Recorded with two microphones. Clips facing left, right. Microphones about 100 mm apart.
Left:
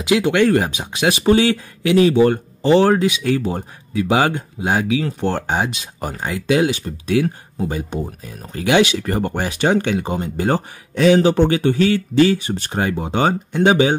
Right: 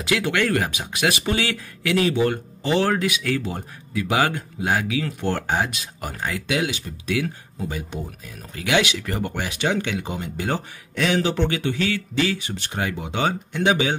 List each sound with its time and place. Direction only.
0.0 s speech: 20° left (ahead or behind)
5.9 s speech: 35° left (ahead or behind)